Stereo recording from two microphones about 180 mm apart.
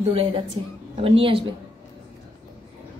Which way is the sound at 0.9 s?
30° right (ahead or behind).